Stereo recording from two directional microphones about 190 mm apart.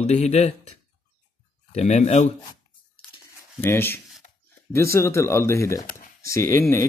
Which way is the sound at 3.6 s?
10° left (ahead or behind).